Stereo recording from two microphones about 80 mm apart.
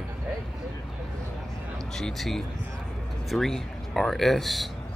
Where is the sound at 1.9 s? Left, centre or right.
Centre.